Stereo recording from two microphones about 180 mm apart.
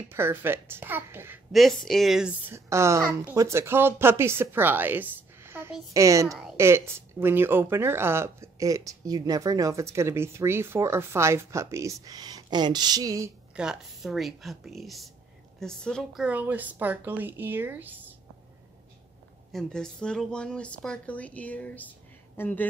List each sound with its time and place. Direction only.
0.1 s speech: 10° right (ahead or behind)
1.5 s speech: centre (ahead or behind); by 6.2 s 15° right (ahead or behind)
6.2 s speech: centre (ahead or behind)
6.5 s speech: 15° right (ahead or behind)
13.6 s speech: centre (ahead or behind)
19.5 s speech: 5° left (ahead or behind)